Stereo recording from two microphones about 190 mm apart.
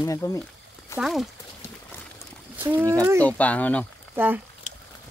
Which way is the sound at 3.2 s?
5° left (ahead or behind).